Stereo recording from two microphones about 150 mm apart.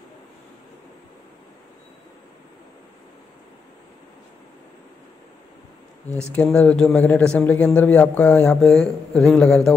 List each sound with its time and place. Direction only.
6.0 s speech: 20° right (ahead or behind)
6.3 s a man's voice: 10° left (ahead or behind)